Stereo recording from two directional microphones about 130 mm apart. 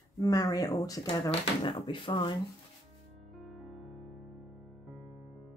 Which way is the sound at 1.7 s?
35° left (ahead or behind).